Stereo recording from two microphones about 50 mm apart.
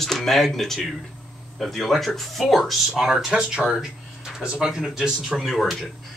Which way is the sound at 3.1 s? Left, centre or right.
Centre.